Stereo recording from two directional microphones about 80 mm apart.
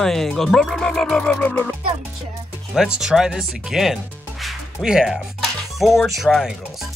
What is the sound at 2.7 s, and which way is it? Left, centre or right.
Speech, centre.